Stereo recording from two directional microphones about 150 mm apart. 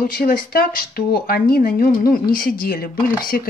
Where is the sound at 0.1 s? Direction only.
75° left (ahead or behind).